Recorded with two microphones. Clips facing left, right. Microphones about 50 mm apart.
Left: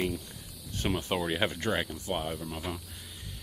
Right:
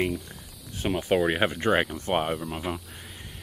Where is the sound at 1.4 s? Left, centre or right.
Right.